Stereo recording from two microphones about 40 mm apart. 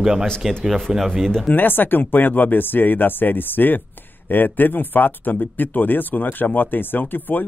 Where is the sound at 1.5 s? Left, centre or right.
Left.